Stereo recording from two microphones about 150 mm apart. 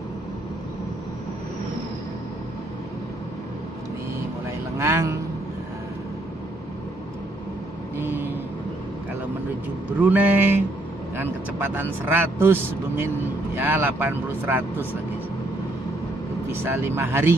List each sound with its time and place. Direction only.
4.7 s vehicle: 20° right (ahead or behind)
8.0 s vehicle: 15° right (ahead or behind)
10.0 s a man's voice: 10° right (ahead or behind)
16.6 s a man's voice: 15° right (ahead or behind)